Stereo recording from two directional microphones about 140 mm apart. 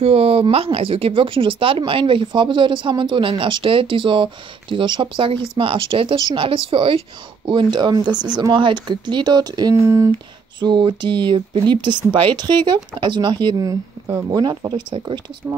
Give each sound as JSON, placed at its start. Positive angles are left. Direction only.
{"t": 0.0, "sound": "speech", "side_deg": -45}
{"t": 10.6, "sound": "speech", "side_deg": -35}